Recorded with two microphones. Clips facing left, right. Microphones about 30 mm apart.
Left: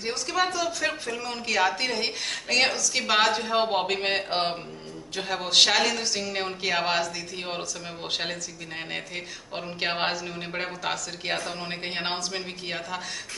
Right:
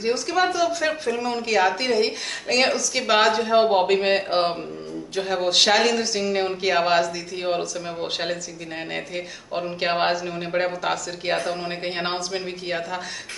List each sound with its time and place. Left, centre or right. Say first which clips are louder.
0.0 s speech: right 5 dB; centre